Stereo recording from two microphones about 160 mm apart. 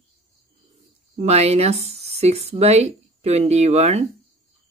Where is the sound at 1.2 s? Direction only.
40° right (ahead or behind).